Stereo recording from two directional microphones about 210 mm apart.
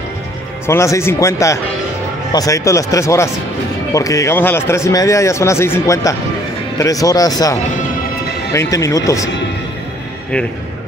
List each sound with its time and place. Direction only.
0.7 s a man's voice: 15° left (ahead or behind)
8.5 s a man's voice: 15° left (ahead or behind)